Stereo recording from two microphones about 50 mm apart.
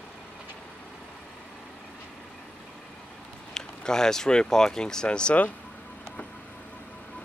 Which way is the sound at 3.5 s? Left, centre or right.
Centre.